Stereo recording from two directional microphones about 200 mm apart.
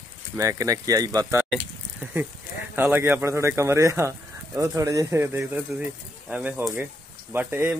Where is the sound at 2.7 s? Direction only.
10° right (ahead or behind).